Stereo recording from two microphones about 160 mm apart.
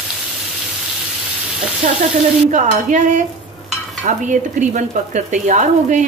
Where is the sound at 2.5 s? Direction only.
50° right (ahead or behind).